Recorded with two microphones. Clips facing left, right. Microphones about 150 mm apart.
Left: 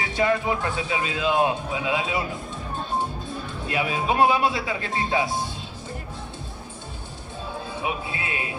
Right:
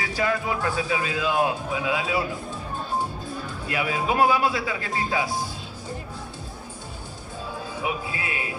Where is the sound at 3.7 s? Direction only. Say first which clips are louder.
Left 1 dB; 25° left (ahead or behind).